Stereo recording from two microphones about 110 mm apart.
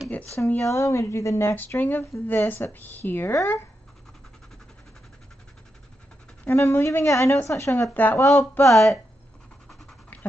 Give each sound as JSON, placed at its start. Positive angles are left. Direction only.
{"t": 0.6, "sound": "a woman's voice", "side_deg": 25}
{"t": 6.4, "sound": "a woman's voice", "side_deg": 20}
{"t": 8.2, "sound": "a woman's voice", "side_deg": 30}
{"t": 8.7, "sound": "speech", "side_deg": 0}